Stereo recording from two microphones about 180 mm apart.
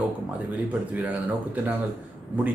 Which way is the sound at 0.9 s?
10° right (ahead or behind).